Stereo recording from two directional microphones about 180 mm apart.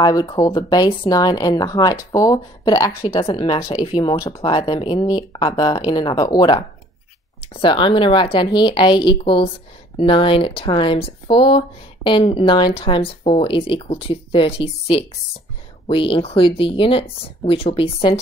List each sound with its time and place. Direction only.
0.0 s speech: 20° left (ahead or behind)
7.6 s speech: 30° left (ahead or behind)